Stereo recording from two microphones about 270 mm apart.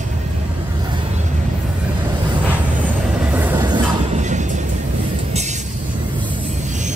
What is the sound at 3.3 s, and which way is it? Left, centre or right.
Music, centre.